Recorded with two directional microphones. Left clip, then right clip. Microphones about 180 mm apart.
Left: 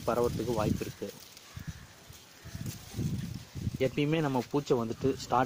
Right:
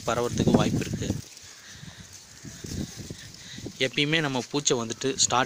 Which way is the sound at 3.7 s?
5° right (ahead or behind).